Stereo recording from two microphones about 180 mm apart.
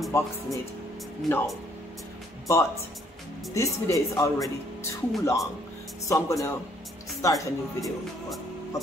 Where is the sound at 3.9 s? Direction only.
20° left (ahead or behind).